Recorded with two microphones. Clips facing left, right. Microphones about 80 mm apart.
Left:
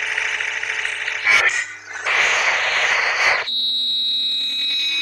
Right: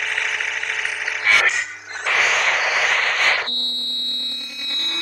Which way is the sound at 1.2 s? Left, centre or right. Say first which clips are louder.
Even; centre.